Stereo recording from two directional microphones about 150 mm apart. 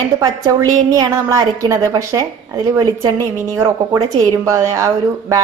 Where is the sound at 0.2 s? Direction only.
25° right (ahead or behind).